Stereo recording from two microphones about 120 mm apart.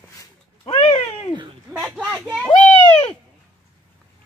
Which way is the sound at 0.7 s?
50° left (ahead or behind).